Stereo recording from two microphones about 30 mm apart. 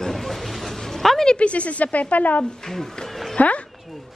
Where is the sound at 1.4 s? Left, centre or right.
Left.